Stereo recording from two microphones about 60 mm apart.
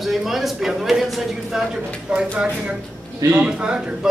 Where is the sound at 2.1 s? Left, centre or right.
Centre.